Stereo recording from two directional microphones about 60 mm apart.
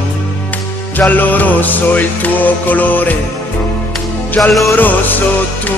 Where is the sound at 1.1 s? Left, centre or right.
Left.